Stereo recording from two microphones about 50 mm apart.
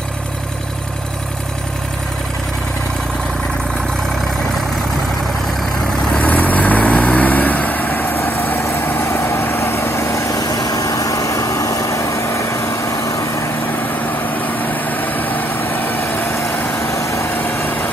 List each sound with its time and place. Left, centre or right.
6.2 s vehicle: left
9.0 s vehicle: left
9.9 s vehicle: left
11.5 s vehicle: left
14.3 s vehicle: left
17.0 s vehicle: left